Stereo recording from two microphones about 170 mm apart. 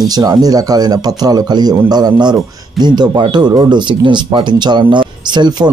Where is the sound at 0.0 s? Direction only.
20° right (ahead or behind).